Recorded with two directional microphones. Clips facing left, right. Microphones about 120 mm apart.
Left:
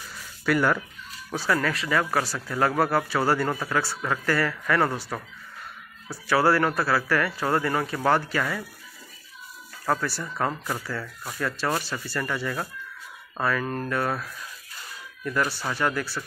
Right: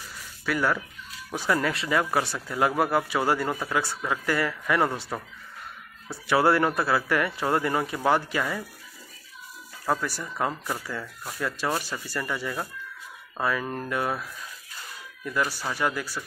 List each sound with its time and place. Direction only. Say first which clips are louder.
0.5 s speech: left 3 dB; centre (ahead or behind)
1.3 s speech: even; 20° right (ahead or behind)
9.8 s speech: left 1 dB; 15° right (ahead or behind)